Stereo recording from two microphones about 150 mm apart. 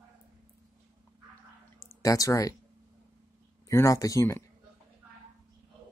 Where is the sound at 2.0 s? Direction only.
20° left (ahead or behind).